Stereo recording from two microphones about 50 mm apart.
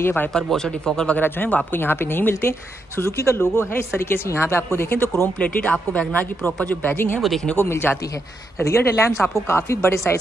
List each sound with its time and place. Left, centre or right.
0.0 s speech: left
0.3 s speech: centre
1.2 s a woman's voice: left
3.0 s speech: left
5.4 s a woman's voice: left
7.2 s speech: centre
7.5 s a woman's voice: left
8.6 s speech: left